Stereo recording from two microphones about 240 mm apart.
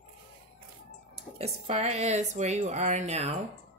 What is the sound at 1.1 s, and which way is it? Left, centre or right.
A woman's voice, right.